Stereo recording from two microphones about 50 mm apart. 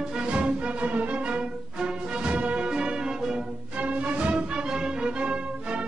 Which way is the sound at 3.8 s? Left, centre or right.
Right.